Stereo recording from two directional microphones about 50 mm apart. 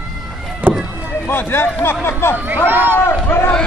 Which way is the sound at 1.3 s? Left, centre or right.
Left.